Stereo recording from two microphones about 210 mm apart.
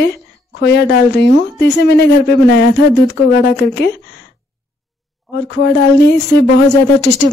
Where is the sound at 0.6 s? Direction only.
55° left (ahead or behind).